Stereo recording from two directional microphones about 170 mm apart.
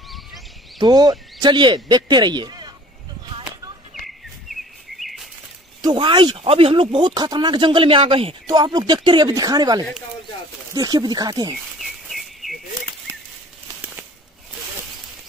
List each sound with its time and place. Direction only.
0.7 s speech: 25° right (ahead or behind)
3.3 s a sound: 30° right (ahead or behind)
4.5 s bird vocalization: centre (ahead or behind)
5.8 s speech: 25° right (ahead or behind)
11.5 s bird: centre (ahead or behind)